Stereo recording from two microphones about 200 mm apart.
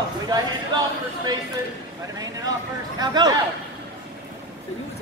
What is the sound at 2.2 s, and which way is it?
Speech, 20° right (ahead or behind).